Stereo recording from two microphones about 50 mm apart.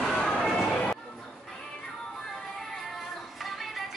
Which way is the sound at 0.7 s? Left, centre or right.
Centre.